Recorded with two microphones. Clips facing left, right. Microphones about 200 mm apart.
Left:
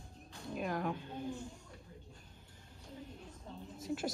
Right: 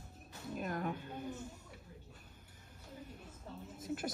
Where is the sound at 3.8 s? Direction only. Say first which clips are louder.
Left 2 dB; 55° right (ahead or behind).